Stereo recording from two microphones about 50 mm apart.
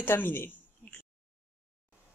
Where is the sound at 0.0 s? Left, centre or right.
Left.